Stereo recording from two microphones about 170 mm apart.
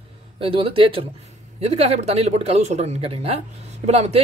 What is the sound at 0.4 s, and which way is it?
Speech, 35° right (ahead or behind).